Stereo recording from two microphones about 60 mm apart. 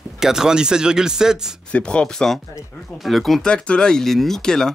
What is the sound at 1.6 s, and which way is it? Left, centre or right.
Speech, centre.